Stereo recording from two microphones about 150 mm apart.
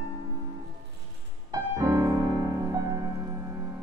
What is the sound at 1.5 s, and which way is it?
Music, 25° right (ahead or behind).